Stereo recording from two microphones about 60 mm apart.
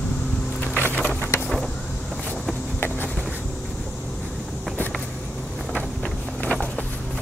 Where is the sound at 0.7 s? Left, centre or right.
Left.